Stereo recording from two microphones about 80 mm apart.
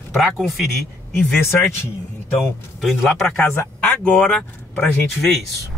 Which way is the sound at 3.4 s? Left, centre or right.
Left.